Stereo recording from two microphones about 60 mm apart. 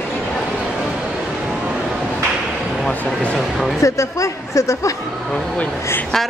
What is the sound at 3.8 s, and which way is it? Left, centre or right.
A woman's voice, left.